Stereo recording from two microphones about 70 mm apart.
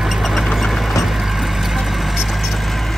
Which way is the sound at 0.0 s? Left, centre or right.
Centre.